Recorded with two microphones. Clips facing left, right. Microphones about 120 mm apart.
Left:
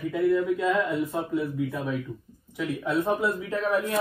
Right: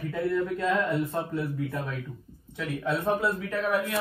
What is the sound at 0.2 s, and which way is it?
Speech, centre (ahead or behind).